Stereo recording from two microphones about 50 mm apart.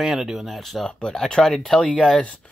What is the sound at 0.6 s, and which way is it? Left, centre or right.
Speech, centre.